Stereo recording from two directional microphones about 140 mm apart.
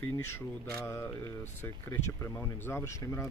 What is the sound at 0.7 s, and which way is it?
Speech, 15° left (ahead or behind).